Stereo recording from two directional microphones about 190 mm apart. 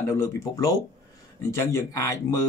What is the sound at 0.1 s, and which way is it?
Speech, 15° left (ahead or behind).